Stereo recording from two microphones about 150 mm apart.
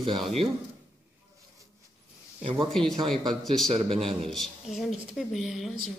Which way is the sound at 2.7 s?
Centre (ahead or behind).